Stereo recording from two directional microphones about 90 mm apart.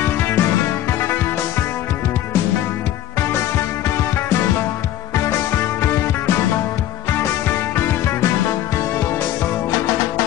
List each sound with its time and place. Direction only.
0.0 s music: 25° left (ahead or behind)